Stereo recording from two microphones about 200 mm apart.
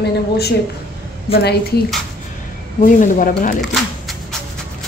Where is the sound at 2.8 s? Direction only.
40° left (ahead or behind).